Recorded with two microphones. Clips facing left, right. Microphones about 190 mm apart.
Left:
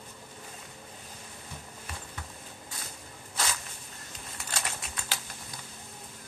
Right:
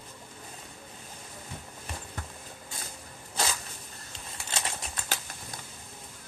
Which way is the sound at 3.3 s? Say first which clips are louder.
Right 3 dB; 30° right (ahead or behind).